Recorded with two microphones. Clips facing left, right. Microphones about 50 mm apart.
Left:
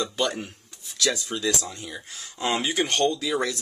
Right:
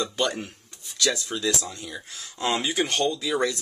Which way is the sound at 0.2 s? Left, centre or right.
Centre.